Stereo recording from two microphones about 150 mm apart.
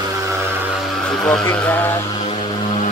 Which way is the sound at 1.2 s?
10° left (ahead or behind).